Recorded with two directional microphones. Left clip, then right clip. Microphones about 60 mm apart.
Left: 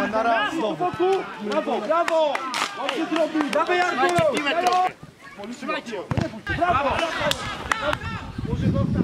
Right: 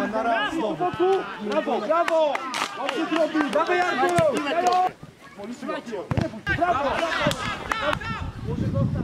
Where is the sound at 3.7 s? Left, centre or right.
Centre.